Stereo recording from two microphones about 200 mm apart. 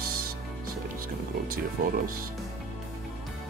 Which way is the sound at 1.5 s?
45° right (ahead or behind).